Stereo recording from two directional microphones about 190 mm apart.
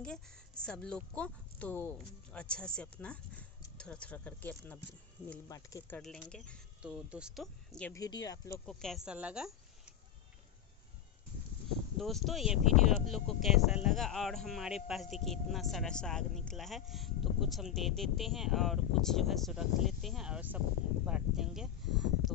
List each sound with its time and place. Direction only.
0.0 s speech: 5° left (ahead or behind)
7.9 s speech: 20° left (ahead or behind)
8.6 s speech: centre (ahead or behind)
12.0 s speech: centre (ahead or behind)